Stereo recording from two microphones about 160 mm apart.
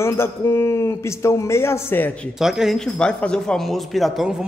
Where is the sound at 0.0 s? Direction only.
15° left (ahead or behind).